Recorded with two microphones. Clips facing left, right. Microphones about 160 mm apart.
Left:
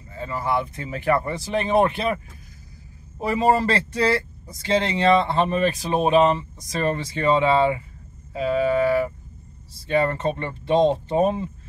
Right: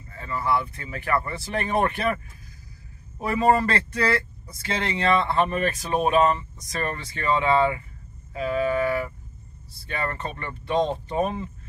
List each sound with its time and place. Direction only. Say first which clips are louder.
0.1 s speech: left 1 dB; 30° left (ahead or behind)
1.3 s speech: left 5 dB; 15° left (ahead or behind)
3.2 s speech: left 1 dB; 30° left (ahead or behind)